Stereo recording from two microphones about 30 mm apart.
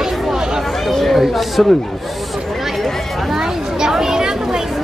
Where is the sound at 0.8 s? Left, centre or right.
Centre.